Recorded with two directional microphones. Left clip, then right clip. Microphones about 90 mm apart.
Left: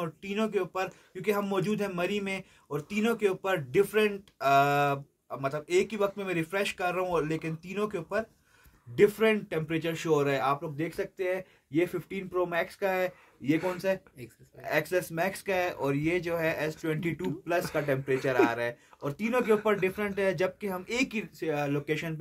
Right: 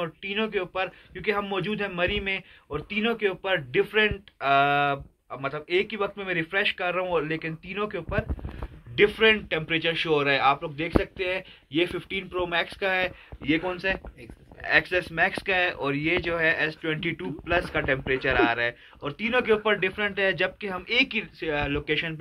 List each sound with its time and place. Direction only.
0.0 s a man's voice: 35° left (ahead or behind)
10.6 s speech: 25° left (ahead or behind)
13.8 s a man's voice: 45° left (ahead or behind)
17.6 s speech: 50° left (ahead or behind)